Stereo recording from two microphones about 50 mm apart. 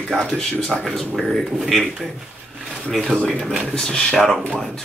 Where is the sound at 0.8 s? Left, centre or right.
Centre.